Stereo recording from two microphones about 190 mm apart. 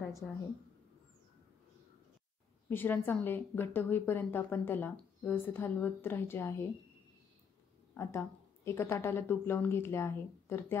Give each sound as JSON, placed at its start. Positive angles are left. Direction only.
{"t": 0.0, "sound": "a sound", "side_deg": 15}
{"t": 2.7, "sound": "a woman's voice", "side_deg": 10}
{"t": 7.9, "sound": "a woman's voice", "side_deg": 15}